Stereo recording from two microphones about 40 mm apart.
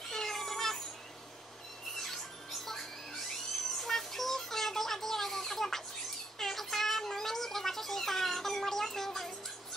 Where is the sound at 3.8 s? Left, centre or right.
Centre.